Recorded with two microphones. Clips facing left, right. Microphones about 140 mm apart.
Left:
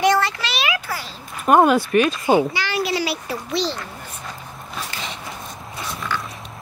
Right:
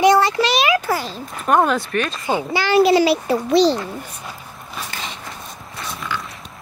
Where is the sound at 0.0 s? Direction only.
15° right (ahead or behind).